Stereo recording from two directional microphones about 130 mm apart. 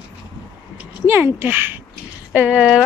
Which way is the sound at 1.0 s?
20° right (ahead or behind).